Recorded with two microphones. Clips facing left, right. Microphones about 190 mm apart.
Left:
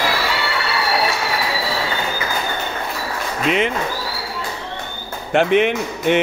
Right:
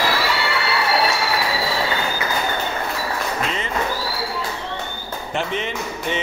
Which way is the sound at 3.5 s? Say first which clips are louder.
Left 9 dB; 70° left (ahead or behind).